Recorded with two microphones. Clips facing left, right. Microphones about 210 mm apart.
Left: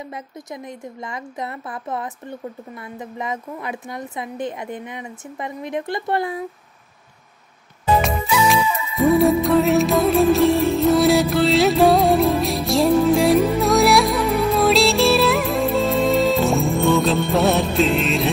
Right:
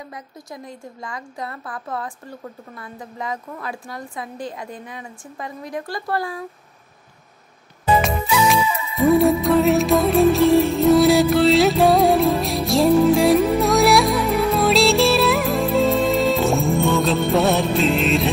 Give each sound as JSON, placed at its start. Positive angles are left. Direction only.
{"t": 0.1, "sound": "a woman's voice", "side_deg": 20}
{"t": 8.0, "sound": "music", "side_deg": 0}